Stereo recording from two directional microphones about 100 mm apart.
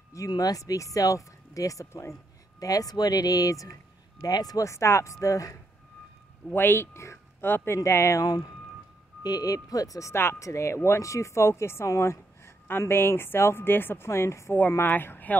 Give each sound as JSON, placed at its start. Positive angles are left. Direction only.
{"t": 0.1, "sound": "speech", "side_deg": 35}
{"t": 6.5, "sound": "speech", "side_deg": 20}